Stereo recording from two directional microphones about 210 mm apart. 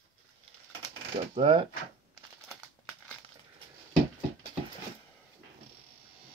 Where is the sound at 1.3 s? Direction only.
25° right (ahead or behind).